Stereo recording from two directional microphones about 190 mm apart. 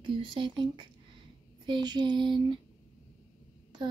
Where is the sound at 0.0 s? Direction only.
25° right (ahead or behind).